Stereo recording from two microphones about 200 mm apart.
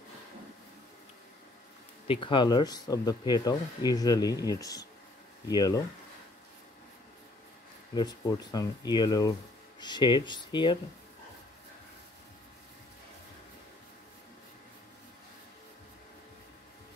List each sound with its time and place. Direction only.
2.0 s speech: 25° left (ahead or behind)
7.9 s speech: 20° left (ahead or behind)